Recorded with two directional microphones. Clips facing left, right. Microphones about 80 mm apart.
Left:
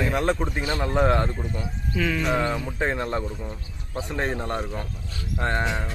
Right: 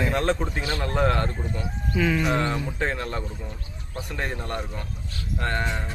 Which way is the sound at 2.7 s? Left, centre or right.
Centre.